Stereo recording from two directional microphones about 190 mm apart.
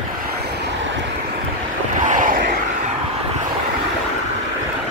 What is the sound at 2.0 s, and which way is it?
Vehicle, 45° right (ahead or behind).